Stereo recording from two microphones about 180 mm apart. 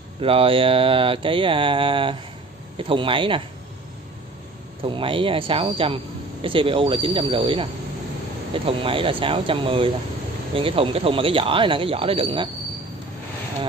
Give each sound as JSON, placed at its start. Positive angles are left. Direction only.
{"t": 0.2, "sound": "mantra", "side_deg": -30}
{"t": 4.8, "sound": "mantra", "side_deg": -30}
{"t": 10.5, "sound": "speech", "side_deg": -30}